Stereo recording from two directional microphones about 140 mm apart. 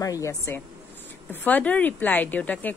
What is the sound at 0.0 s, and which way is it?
Speech, 25° left (ahead or behind).